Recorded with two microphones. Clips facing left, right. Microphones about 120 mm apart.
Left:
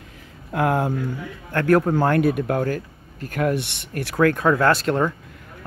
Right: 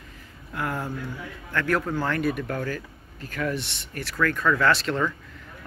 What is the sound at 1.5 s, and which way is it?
Speech, 50° left (ahead or behind).